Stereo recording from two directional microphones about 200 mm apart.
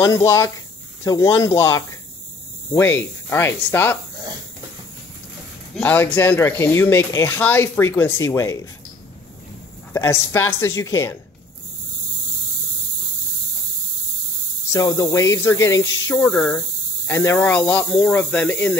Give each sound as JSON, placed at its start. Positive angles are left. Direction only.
{"t": 0.0, "sound": "speech", "side_deg": 15}
{"t": 5.8, "sound": "speech", "side_deg": 10}
{"t": 9.9, "sound": "speech", "side_deg": 10}
{"t": 14.7, "sound": "speech", "side_deg": 15}